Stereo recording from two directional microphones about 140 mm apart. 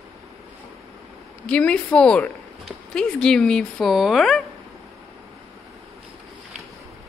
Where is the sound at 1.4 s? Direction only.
10° left (ahead or behind).